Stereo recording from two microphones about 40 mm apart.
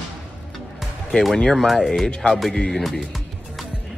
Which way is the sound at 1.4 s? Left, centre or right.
Centre.